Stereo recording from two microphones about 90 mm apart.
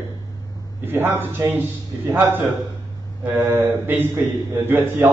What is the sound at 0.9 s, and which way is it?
A man's voice, 25° right (ahead or behind).